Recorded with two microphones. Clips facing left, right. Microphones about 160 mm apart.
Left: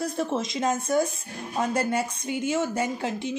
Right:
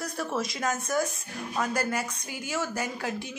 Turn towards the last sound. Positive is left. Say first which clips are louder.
# left 5 dB
turn(degrees=25)  # may be behind; listen again after turning